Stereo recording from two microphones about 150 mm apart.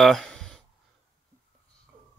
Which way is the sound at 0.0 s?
Centre (ahead or behind).